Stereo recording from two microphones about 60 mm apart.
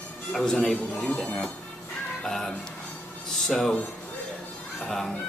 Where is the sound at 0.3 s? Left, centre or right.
Centre.